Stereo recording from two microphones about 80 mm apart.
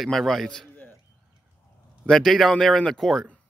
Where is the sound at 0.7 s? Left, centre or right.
Left.